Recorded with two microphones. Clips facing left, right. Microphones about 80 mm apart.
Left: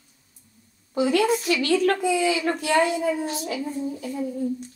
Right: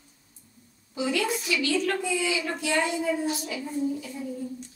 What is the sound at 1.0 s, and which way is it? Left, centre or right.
A woman's voice, left.